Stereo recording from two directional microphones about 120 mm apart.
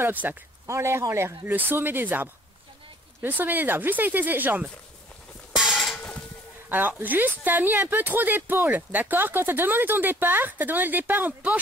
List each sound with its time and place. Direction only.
0.0 s speech: 15° right (ahead or behind)
5.6 s a sound: centre (ahead or behind)
6.7 s speech: 15° right (ahead or behind)